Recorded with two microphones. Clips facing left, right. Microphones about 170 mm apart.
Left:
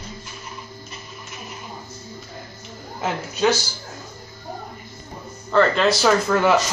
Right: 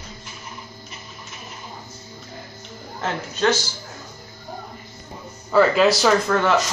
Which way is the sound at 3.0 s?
10° left (ahead or behind).